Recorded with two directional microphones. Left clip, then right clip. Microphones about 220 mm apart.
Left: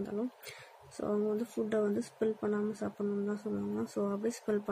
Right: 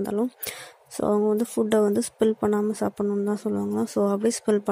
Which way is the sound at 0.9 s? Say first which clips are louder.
Right 11 dB; 35° right (ahead or behind).